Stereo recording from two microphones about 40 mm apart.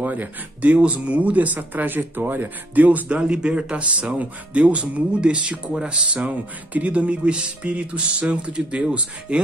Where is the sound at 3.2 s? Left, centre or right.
Right.